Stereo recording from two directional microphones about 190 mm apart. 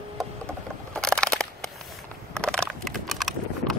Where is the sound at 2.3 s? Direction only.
5° left (ahead or behind).